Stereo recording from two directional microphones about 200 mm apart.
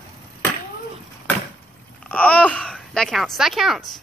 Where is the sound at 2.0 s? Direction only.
5° left (ahead or behind).